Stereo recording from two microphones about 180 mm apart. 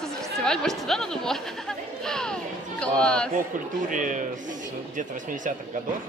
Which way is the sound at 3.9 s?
45° right (ahead or behind).